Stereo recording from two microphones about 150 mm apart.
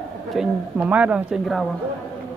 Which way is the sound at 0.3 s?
5° right (ahead or behind).